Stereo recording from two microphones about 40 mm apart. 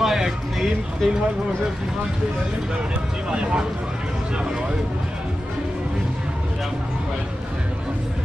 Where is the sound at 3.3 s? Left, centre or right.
Right.